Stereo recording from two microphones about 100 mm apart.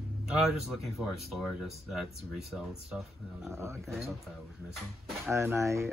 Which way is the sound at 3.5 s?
25° right (ahead or behind).